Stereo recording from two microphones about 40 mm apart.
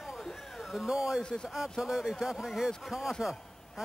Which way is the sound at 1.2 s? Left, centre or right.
Centre.